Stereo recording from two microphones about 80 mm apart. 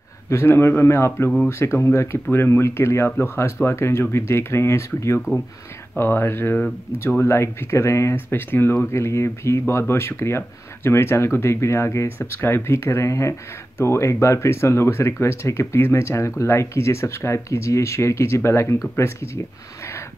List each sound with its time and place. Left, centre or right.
0.3 s speech: left